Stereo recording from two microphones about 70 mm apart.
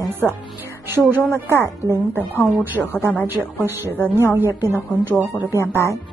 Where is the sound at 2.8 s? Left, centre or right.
Centre.